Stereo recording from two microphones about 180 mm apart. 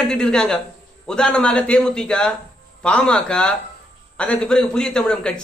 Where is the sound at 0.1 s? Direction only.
5° left (ahead or behind).